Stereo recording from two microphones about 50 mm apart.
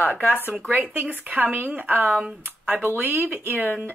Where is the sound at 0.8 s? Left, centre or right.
Right.